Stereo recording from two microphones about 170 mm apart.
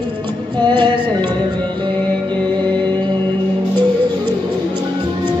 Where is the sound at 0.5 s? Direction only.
25° right (ahead or behind).